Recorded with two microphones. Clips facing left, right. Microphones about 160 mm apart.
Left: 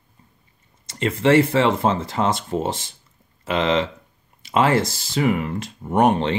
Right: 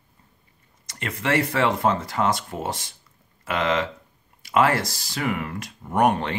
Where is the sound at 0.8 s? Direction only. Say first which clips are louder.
Left 9 dB; 25° left (ahead or behind).